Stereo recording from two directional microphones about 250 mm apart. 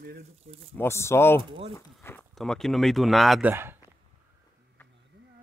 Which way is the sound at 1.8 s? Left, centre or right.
Centre.